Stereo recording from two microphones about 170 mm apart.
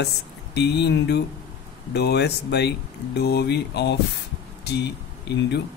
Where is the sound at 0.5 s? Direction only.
80° left.